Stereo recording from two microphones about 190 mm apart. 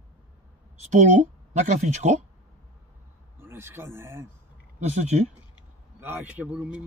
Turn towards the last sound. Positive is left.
turn(degrees=-5)  # may be behind; listen again after turning